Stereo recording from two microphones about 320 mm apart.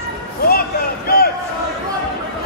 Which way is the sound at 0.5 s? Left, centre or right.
Left.